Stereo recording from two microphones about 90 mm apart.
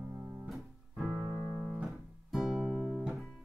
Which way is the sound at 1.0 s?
20° right (ahead or behind).